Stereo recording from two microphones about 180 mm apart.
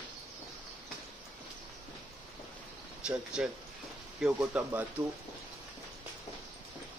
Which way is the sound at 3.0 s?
5° right (ahead or behind).